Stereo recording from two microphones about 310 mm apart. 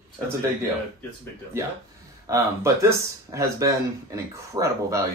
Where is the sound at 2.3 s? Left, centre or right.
Centre.